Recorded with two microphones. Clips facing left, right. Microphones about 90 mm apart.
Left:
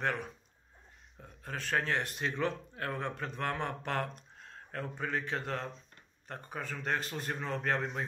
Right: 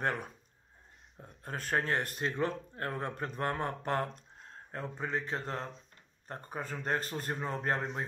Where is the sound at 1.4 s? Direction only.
45° right (ahead or behind); by 5.6 s 30° right (ahead or behind).